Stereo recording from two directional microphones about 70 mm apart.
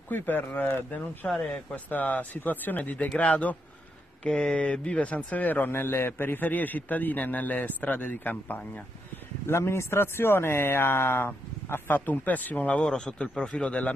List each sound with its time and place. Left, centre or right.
0.1 s a man's voice: left
1.4 s speech: centre
1.9 s a man's voice: left
9.5 s speech: left; by 13.9 s centre